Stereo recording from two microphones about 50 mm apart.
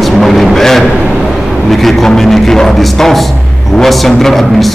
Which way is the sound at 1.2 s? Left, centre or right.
Centre.